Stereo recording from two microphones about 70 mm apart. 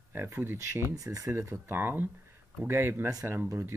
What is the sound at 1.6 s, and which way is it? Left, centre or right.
Speech, right.